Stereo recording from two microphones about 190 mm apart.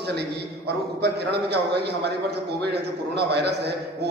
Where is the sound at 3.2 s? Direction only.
60° right (ahead or behind).